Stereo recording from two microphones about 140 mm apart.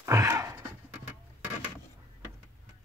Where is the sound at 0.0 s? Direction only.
20° right (ahead or behind).